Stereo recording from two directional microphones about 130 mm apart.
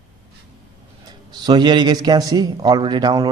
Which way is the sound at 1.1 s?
35° right (ahead or behind).